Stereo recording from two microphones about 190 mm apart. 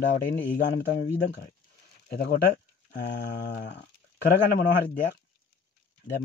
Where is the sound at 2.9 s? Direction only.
60° left (ahead or behind).